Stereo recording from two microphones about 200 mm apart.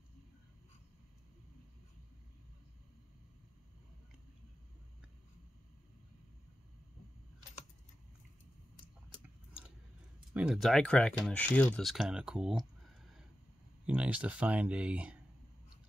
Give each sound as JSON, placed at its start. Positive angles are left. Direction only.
{"t": 10.3, "sound": "speech", "side_deg": -5}
{"t": 13.8, "sound": "speech", "side_deg": -5}